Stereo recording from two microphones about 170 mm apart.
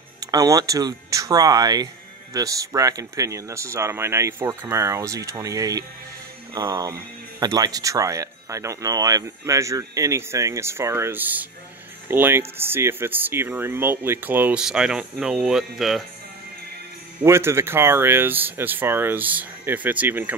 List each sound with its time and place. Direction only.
0.2 s speech: 20° right (ahead or behind); by 16.0 s centre (ahead or behind)
17.2 s speech: 15° right (ahead or behind)